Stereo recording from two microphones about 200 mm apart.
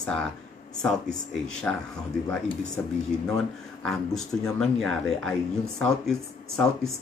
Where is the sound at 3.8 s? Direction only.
Centre (ahead or behind).